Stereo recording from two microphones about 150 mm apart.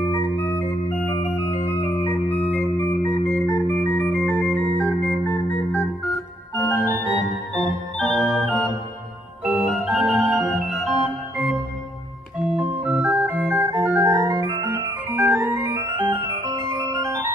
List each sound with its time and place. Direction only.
0.0 s organ: 20° left (ahead or behind)
7.5 s music: 5° left (ahead or behind)
9.4 s organ: 5° right (ahead or behind)
12.4 s organ: 10° right (ahead or behind)